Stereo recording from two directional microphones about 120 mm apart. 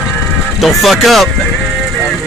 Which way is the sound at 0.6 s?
Centre (ahead or behind).